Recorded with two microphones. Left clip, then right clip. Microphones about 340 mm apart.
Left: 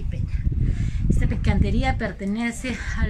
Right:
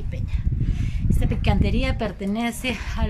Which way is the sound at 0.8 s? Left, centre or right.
Centre.